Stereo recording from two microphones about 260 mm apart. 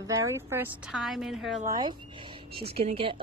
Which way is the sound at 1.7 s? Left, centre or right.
Centre.